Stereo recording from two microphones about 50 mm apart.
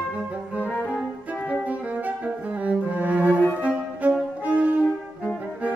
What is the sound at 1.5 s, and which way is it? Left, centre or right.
Bowed string instrument, right.